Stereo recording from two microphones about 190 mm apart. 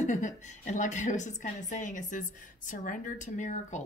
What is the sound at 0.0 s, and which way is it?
A woman's voice, 40° left (ahead or behind).